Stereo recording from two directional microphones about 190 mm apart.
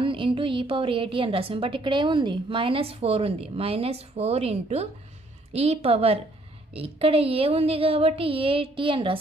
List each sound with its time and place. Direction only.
0.0 s a woman's voice: 25° right (ahead or behind)